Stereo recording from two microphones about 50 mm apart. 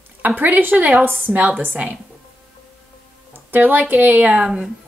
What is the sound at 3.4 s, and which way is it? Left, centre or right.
Speech, right.